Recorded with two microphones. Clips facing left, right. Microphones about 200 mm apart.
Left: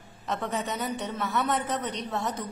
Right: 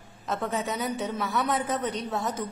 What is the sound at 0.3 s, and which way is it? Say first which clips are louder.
A woman's voice: right 1 dB; centre (ahead or behind).